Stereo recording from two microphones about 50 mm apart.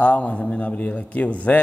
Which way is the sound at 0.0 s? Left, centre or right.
Left.